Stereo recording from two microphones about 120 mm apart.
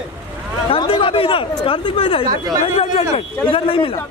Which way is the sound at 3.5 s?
50° left (ahead or behind).